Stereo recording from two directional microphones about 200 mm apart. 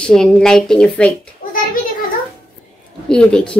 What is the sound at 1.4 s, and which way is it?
Children playing, 45° left (ahead or behind).